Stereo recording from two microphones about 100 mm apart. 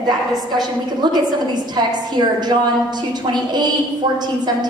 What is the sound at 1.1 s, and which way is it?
A woman's voice, 45° right (ahead or behind).